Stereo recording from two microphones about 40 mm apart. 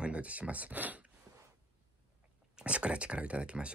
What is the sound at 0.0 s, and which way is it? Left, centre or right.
Speech, right.